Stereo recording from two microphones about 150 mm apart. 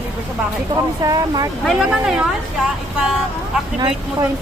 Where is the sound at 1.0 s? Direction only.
25° right (ahead or behind).